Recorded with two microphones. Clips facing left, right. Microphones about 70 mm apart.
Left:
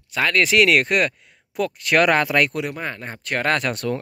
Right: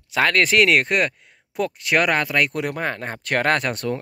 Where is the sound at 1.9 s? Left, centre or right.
Centre.